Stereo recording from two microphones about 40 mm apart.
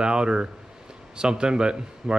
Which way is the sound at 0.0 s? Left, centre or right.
Right.